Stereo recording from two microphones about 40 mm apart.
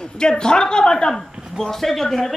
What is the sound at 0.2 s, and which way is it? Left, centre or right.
A woman's voice, left.